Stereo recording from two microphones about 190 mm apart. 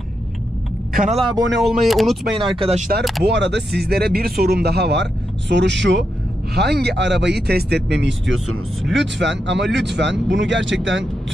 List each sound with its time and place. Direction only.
0.9 s speech: 40° right (ahead or behind)
1.6 s speech: centre (ahead or behind)
2.6 s speech: 35° right (ahead or behind)
3.0 s speech: centre (ahead or behind)
3.3 s speech: 65° right (ahead or behind)
6.5 s speech: 60° right (ahead or behind); by 11.3 s 75° right (ahead or behind)